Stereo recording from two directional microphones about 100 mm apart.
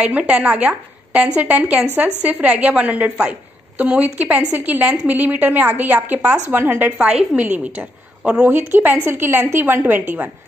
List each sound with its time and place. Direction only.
0.0 s a woman's voice: 10° right (ahead or behind)